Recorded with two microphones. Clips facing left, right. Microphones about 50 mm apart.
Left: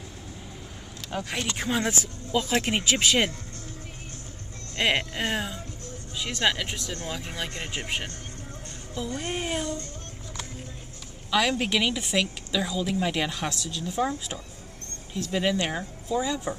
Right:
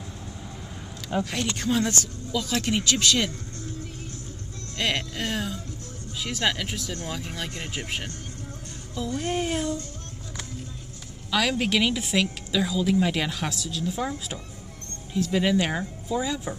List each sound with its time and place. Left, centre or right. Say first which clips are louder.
1.2 s speech: right 2 dB; centre
4.7 s speech: left 2 dB; centre
6.1 s a woman's voice: left 1 dB; centre
11.2 s a woman's voice: even; centre